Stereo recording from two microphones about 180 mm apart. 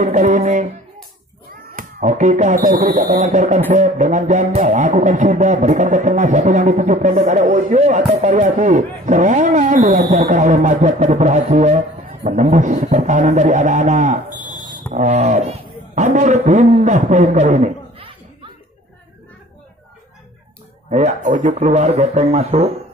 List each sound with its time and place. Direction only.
0.0 s a sound: 40° right (ahead or behind)
1.8 s a man's voice: 40° right (ahead or behind)
3.7 s music: 45° right (ahead or behind)
14.9 s a man's voice: 40° right (ahead or behind)
20.9 s a man's voice: 40° right (ahead or behind)